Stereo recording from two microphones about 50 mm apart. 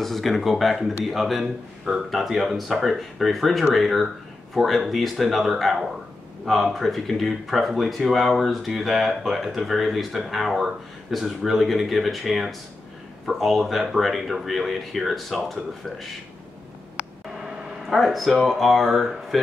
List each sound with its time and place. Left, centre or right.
0.0 s speech: centre
17.9 s speech: centre